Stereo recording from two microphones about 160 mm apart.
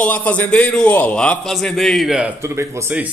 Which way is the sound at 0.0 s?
10° left (ahead or behind).